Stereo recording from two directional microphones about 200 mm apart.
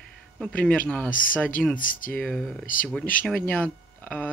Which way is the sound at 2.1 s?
5° left (ahead or behind).